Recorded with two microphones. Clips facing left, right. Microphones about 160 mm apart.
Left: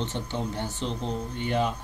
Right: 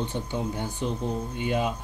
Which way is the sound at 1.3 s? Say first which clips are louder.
Even; 10° right (ahead or behind).